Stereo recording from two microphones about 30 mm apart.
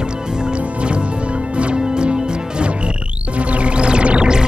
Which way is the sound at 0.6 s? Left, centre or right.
Right.